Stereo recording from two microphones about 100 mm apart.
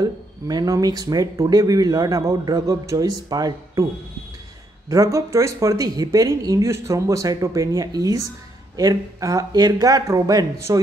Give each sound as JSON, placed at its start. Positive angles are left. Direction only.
{"t": 0.0, "sound": "speech", "side_deg": -40}
{"t": 4.8, "sound": "speech", "side_deg": -35}